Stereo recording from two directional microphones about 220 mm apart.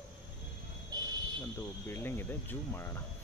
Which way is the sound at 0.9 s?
20° right (ahead or behind).